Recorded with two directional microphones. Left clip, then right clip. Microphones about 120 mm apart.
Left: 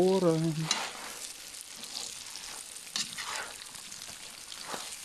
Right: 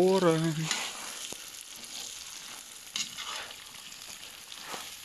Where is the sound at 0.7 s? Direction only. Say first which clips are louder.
Left 1 dB; 25° left (ahead or behind).